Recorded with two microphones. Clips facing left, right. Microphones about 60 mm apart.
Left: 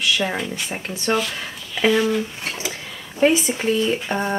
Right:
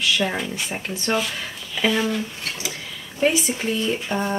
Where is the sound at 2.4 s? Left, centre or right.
Left.